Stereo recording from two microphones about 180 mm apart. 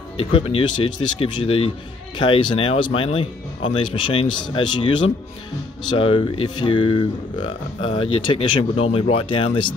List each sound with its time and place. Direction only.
0.2 s speech: 30° left (ahead or behind)